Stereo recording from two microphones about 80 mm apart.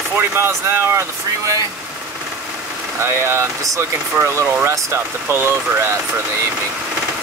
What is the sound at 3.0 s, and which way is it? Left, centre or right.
Speech, right.